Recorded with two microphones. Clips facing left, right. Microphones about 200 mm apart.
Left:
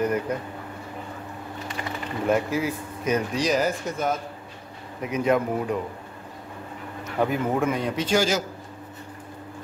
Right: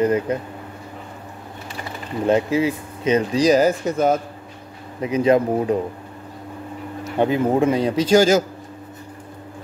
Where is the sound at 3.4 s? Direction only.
40° right (ahead or behind).